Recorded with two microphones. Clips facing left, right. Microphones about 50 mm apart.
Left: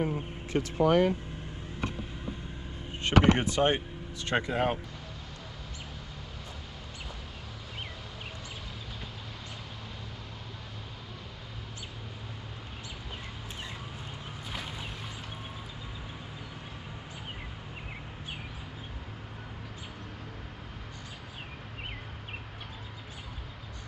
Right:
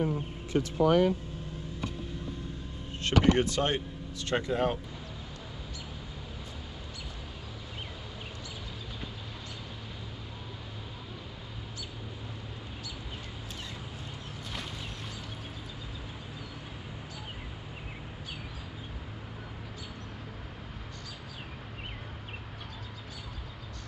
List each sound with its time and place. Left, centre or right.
0.0 s vehicle: left
2.9 s speech: left